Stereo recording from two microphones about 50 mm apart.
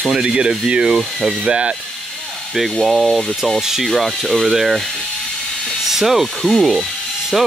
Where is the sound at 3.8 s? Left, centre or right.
Centre.